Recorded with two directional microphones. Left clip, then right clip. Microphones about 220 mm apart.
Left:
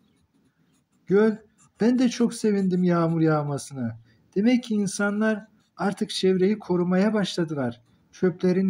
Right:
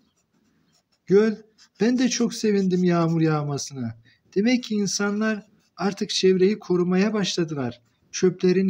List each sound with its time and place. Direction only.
1.0 s speech: 20° right (ahead or behind)